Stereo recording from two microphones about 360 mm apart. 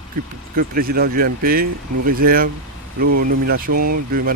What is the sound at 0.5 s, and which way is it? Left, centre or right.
Speech, right.